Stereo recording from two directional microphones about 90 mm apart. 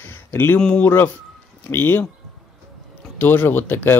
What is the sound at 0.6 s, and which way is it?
Speech, 15° left (ahead or behind).